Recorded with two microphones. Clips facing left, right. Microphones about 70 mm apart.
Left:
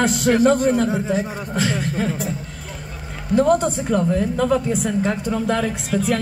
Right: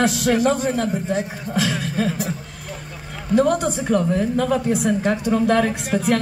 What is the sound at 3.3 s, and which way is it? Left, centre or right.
A woman's voice, right.